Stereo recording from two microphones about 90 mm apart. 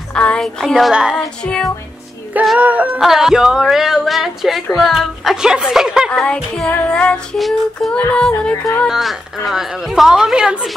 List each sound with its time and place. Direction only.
0.1 s music: 10° left (ahead or behind); by 1.1 s 5° right (ahead or behind)
1.1 s music: 5° left (ahead or behind)
2.6 s music: 15° right (ahead or behind)
3.0 s a woman's voice: 5° right (ahead or behind)
6.0 s music: 10° left (ahead or behind)
7.3 s a woman's voice: centre (ahead or behind)
7.9 s music: 10° left (ahead or behind)
8.8 s a woman's voice: centre (ahead or behind)